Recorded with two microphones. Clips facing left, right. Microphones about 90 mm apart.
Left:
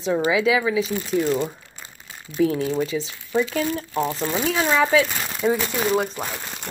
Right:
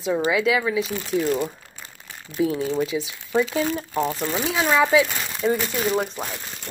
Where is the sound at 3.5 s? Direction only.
20° right (ahead or behind).